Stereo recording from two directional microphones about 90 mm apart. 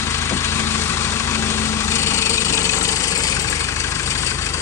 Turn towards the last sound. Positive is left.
turn(degrees=40)  # may be behind; listen again after turning